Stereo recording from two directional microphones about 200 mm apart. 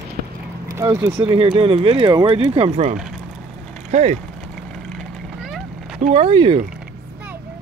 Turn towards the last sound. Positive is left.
turn(degrees=-25)  # may be behind; listen again after turning